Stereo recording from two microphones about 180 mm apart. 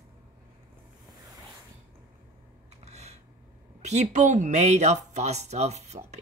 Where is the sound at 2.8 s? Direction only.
40° right (ahead or behind).